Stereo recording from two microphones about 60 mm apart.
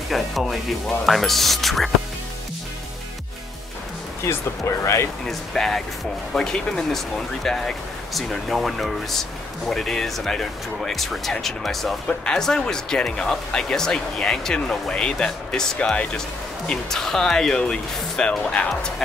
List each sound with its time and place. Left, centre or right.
0.1 s speech: centre
4.2 s speech: left
5.2 s speech: centre
16.6 s speech: centre